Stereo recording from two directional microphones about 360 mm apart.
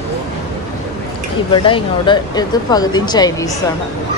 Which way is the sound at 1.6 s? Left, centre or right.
Centre.